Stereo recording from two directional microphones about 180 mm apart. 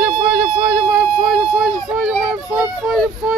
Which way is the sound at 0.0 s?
20° right (ahead or behind).